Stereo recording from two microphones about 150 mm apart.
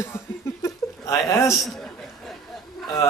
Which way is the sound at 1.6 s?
Centre (ahead or behind).